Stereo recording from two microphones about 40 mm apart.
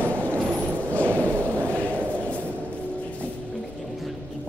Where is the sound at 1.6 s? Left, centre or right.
Left.